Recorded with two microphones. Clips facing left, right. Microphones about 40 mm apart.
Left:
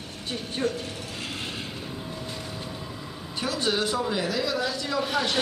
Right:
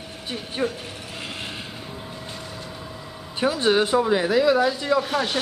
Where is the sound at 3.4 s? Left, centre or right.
Right.